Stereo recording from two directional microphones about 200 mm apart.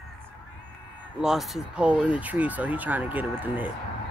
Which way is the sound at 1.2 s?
Centre (ahead or behind).